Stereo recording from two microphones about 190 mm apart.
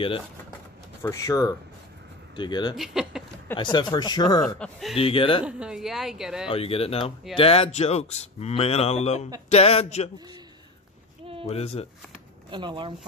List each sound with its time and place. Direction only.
1.0 s speech: 15° left (ahead or behind)
2.7 s speech: centre (ahead or behind)
3.7 s speech: 20° left (ahead or behind)
4.6 s a woman's voice: centre (ahead or behind)
4.9 s speech: 30° left (ahead or behind)
5.4 s a woman's voice: 5° right (ahead or behind)
6.5 s speech: 30° left (ahead or behind)
11.4 s speech: 30° left (ahead or behind)
12.4 s speech: 25° right (ahead or behind)